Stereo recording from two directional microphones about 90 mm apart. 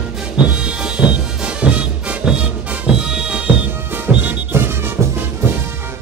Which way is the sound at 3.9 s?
25° right (ahead or behind).